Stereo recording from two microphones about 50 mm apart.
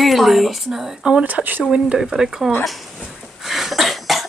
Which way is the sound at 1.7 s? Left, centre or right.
Centre.